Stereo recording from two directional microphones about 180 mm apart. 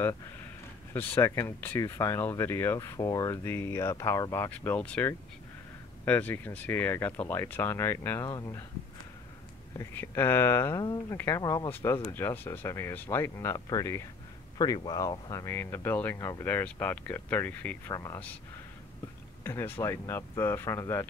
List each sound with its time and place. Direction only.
0.9 s speech: 15° left (ahead or behind)
9.8 s speech: 15° left (ahead or behind)
19.4 s speech: 10° left (ahead or behind)